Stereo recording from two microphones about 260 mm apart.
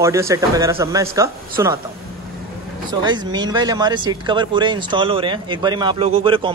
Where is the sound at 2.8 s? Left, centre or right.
Centre.